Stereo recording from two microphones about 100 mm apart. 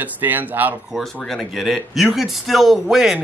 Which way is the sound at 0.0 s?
20° right (ahead or behind).